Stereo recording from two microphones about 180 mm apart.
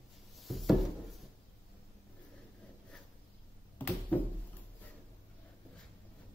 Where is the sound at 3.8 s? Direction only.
10° left (ahead or behind).